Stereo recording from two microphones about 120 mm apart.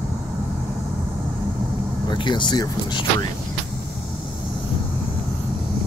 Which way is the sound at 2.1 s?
40° left (ahead or behind).